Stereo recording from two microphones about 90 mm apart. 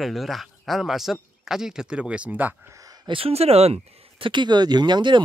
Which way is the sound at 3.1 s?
90° right.